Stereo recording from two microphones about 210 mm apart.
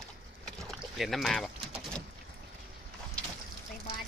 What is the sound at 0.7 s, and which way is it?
Boat, centre (ahead or behind).